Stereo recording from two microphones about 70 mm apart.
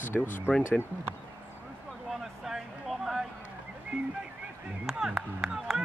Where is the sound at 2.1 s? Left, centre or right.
Centre.